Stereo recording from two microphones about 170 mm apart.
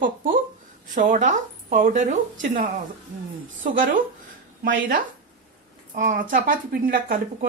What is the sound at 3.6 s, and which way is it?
Speech, 55° right (ahead or behind).